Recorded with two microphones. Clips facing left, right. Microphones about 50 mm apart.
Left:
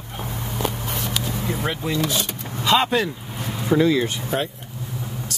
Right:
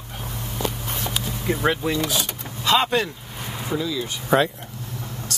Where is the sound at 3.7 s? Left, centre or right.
Left.